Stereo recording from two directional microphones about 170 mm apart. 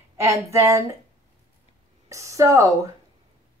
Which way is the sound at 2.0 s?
20° right (ahead or behind).